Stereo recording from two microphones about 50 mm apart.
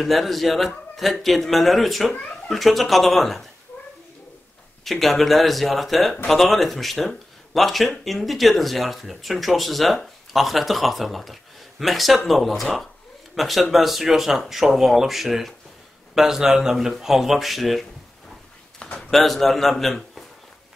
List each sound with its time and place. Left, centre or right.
0.0 s speech: centre
4.8 s a man's voice: centre
18.9 s speech: centre